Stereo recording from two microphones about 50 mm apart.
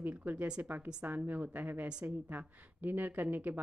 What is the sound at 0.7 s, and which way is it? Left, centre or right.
Speech, right.